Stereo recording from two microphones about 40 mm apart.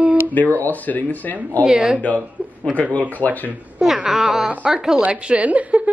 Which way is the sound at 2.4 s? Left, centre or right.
Right.